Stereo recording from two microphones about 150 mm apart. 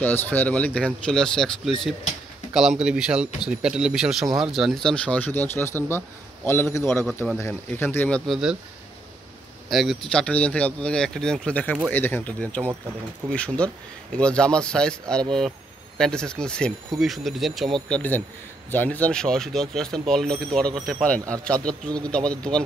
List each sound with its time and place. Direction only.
0.0 s speech: 10° left (ahead or behind)
8.3 s speech: 5° right (ahead or behind)
9.7 s speech: centre (ahead or behind)
17.8 s speech: 10° left (ahead or behind)